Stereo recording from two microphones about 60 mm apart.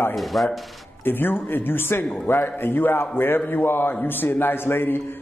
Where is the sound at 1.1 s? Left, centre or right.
Left.